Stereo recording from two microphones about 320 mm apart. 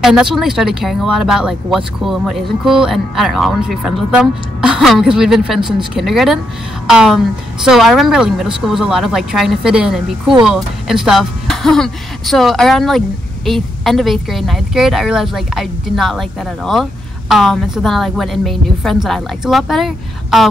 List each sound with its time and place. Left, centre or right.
0.0 s speech: centre